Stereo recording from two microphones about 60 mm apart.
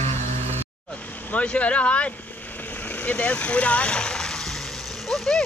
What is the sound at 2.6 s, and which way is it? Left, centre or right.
Vehicle, left.